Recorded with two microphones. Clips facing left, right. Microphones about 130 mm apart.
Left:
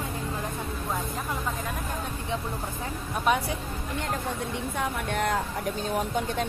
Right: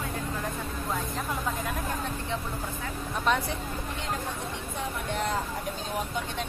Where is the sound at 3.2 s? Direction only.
10° left (ahead or behind).